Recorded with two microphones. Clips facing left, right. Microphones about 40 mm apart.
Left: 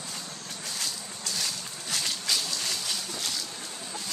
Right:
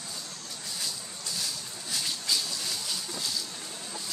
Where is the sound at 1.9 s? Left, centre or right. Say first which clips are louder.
Left 1 dB; left.